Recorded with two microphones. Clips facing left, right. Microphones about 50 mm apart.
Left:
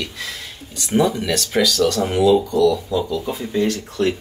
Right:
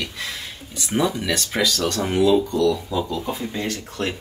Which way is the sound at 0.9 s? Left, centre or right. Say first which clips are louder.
Left 4 dB; centre.